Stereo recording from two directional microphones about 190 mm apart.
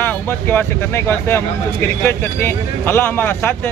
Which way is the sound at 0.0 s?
10° left (ahead or behind).